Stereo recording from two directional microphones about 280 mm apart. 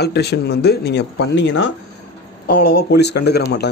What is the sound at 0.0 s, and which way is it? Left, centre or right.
Speech, left.